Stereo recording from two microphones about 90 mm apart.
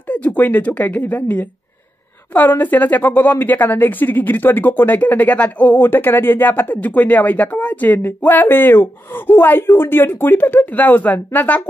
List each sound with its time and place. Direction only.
0.1 s a woman's voice: 15° left (ahead or behind)